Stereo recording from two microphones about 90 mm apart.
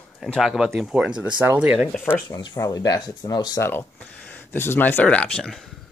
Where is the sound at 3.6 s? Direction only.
25° left (ahead or behind); by 5.6 s 10° left (ahead or behind).